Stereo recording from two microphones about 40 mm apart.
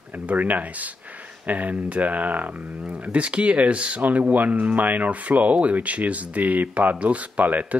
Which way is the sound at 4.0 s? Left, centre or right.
Right.